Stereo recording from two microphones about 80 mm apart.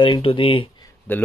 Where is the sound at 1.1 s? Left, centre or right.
Left.